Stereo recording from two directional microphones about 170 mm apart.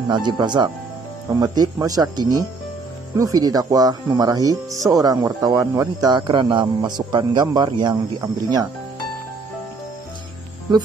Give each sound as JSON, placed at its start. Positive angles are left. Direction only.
{"t": 0.1, "sound": "speech", "side_deg": -25}